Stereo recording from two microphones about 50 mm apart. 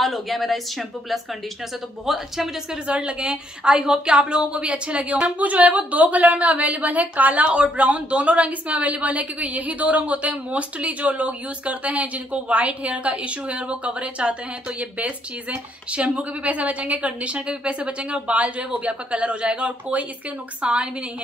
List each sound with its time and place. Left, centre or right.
0.0 s speech: centre
2.9 s a woman's voice: right